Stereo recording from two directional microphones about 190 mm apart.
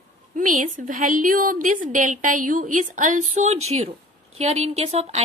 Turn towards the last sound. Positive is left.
turn(degrees=-35)  # may be behind; listen again after turning